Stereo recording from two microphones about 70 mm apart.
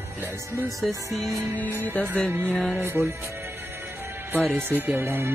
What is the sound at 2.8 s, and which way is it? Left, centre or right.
Music, right.